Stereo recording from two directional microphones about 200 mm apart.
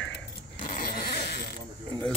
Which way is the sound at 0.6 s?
40° left (ahead or behind).